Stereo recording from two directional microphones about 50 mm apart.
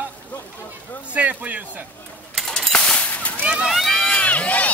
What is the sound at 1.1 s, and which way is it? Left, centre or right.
Speech, right.